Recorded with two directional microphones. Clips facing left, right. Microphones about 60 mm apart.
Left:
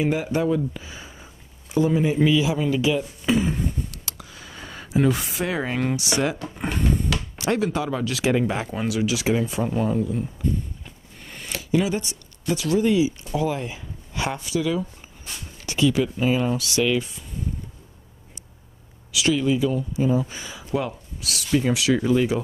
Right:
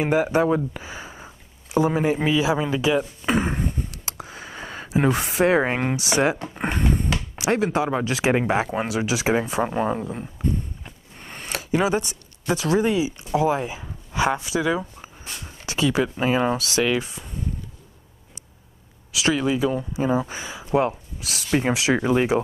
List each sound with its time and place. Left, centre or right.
0.0 s speech: right
10.8 s a sound: right
13.3 s speech: right
19.1 s speech: right